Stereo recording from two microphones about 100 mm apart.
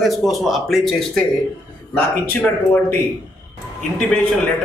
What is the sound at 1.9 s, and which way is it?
Speech, 20° left (ahead or behind).